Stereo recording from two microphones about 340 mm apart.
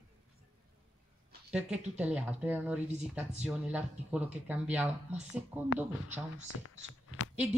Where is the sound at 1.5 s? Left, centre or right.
Centre.